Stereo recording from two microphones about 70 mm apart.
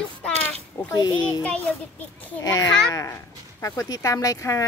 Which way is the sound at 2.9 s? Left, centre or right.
Left.